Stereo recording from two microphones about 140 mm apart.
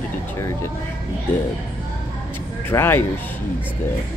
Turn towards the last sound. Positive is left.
turn(degrees=15)  # may be behind; listen again after turning